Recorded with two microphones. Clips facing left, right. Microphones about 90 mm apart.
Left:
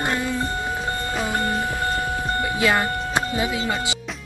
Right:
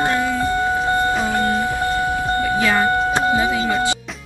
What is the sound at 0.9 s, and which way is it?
Music, 20° right (ahead or behind).